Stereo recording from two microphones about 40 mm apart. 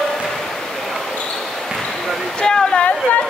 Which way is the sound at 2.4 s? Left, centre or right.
Centre.